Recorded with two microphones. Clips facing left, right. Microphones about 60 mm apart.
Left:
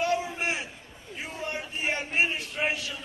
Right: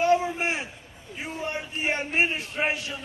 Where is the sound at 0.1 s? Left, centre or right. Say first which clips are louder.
Right 5 dB; right.